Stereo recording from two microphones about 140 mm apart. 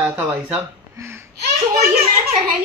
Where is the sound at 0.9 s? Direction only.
20° right (ahead or behind).